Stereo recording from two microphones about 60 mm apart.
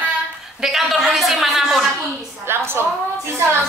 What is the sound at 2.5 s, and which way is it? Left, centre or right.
Speech, right.